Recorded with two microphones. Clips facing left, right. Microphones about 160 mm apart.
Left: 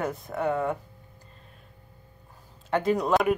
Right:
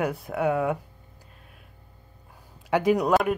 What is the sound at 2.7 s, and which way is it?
Speech, 10° right (ahead or behind).